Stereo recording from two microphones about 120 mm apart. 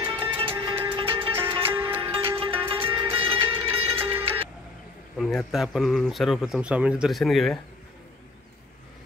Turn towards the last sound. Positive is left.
turn(degrees=0)  # may be behind; listen again after turning